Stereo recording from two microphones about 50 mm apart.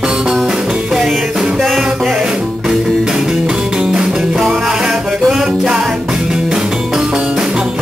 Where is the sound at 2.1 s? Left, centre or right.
Centre.